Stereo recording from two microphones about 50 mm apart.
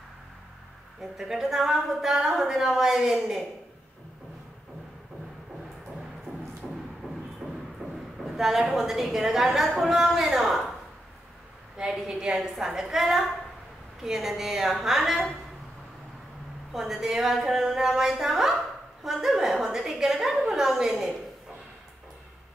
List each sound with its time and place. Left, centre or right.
1.1 s a woman's voice: centre
7.0 s music: centre
7.4 s music: centre
7.8 s a sound: centre
8.2 s a woman's voice: centre
11.8 s a woman's voice: centre
16.7 s a woman's voice: centre